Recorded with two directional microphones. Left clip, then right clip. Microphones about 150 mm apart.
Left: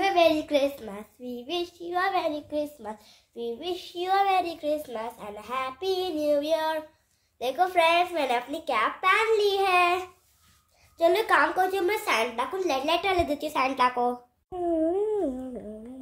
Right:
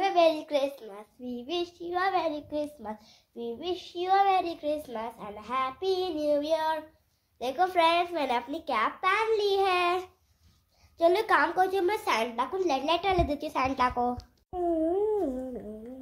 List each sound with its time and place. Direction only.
0.0 s child singing: 25° left (ahead or behind)
14.8 s humming: 30° left (ahead or behind)